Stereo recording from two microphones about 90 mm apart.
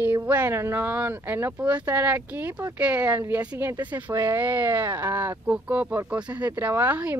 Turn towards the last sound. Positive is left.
turn(degrees=-15)  # may be behind; listen again after turning